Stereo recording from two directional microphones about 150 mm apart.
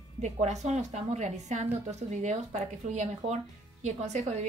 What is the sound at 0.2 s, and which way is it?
A woman's voice, 50° right (ahead or behind).